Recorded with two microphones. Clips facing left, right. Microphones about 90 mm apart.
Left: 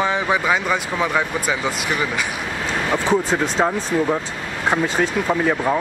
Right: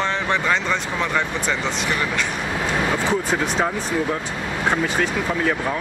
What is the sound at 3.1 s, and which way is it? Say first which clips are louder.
Speech: left 3 dB; 20° left (ahead or behind).